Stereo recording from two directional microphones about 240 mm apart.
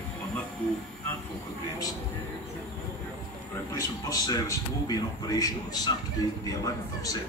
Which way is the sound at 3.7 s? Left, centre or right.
Centre.